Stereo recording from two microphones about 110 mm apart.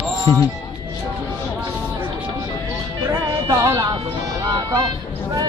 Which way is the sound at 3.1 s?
30° right (ahead or behind).